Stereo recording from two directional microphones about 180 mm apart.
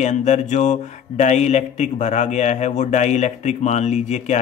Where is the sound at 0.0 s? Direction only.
40° left (ahead or behind).